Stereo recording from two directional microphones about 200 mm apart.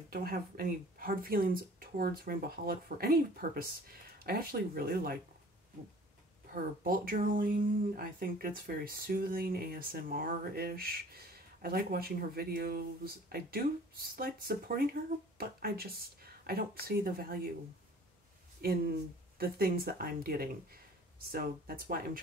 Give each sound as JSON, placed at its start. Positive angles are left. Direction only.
{"t": 0.1, "sound": "speech", "side_deg": -50}
{"t": 6.5, "sound": "speech", "side_deg": -45}
{"t": 18.6, "sound": "speech", "side_deg": -50}